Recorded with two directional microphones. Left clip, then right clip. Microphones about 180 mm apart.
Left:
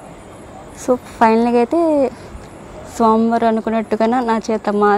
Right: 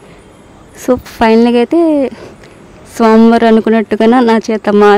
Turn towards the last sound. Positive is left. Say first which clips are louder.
# right 7 dB
turn(degrees=-30)  # may be behind; listen again after turning